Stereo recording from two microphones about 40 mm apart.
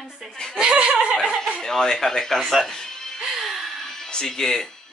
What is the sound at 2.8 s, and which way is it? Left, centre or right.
Music, centre.